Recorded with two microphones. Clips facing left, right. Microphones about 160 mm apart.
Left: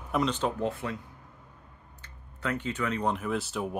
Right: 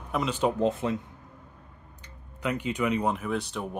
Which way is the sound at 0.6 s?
20° right (ahead or behind).